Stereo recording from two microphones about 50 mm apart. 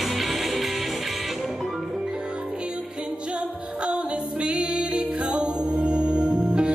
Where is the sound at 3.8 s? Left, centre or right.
Right.